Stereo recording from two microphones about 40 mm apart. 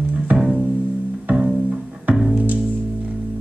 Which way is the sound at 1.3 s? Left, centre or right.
Right.